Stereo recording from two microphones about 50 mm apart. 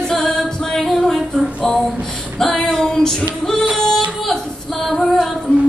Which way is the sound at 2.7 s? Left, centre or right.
Centre.